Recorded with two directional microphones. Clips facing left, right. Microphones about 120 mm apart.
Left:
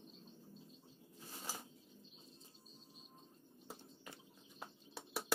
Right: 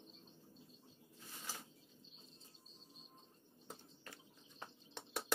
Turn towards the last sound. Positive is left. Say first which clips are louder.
# left 1 dB
turn(degrees=5)  # may be behind; listen again after turning